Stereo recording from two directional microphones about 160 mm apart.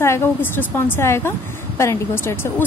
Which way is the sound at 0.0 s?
15° left (ahead or behind).